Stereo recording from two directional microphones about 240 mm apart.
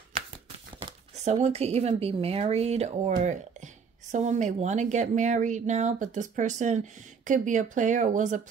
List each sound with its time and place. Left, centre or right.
0.8 s speech: right